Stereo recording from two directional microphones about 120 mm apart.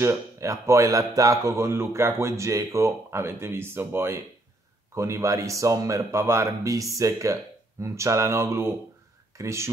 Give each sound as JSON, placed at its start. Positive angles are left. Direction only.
{"t": 0.0, "sound": "speech", "side_deg": -25}